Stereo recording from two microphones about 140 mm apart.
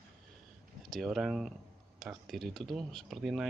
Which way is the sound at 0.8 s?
Centre (ahead or behind).